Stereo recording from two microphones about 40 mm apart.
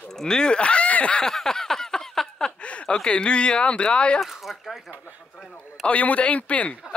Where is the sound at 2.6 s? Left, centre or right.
Left.